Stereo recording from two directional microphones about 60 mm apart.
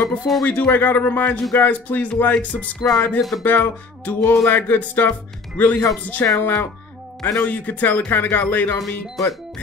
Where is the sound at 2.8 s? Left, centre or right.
Centre.